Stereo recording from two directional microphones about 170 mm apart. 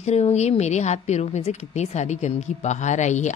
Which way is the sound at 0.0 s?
40° left (ahead or behind).